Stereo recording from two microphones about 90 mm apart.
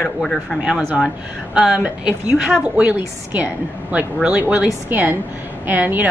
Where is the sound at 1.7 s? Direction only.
15° right (ahead or behind).